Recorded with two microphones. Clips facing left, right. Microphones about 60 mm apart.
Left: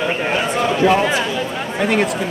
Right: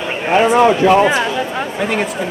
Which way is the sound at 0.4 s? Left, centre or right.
Right.